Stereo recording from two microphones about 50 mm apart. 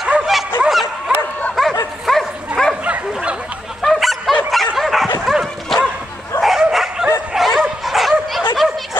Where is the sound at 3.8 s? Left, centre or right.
Centre.